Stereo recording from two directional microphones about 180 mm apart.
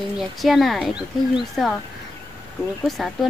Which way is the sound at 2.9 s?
Centre (ahead or behind).